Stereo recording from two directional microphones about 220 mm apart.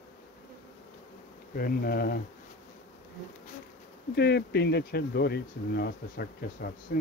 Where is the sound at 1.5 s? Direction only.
45° left (ahead or behind).